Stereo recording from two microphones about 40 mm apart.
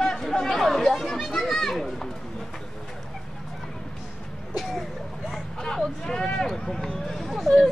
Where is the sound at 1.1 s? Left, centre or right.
Centre.